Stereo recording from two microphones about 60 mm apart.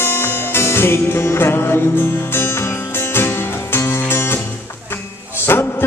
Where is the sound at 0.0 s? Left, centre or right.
Left.